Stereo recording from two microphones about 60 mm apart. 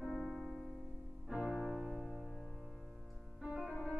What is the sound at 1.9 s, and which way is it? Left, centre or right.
Music, centre.